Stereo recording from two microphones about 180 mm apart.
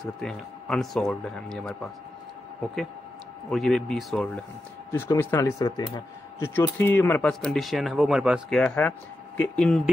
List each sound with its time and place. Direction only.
0.0 s speech: centre (ahead or behind)
3.4 s speech: 5° left (ahead or behind); by 6.5 s 25° left (ahead or behind)
6.5 s speech: 10° left (ahead or behind)